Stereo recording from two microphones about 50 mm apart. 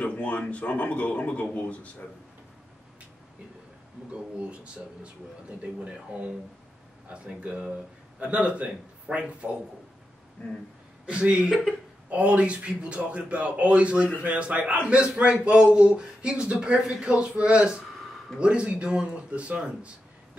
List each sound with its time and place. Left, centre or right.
0.0 s speech: left
7.2 s speech: right
10.4 s speech: centre
11.1 s a man's voice: centre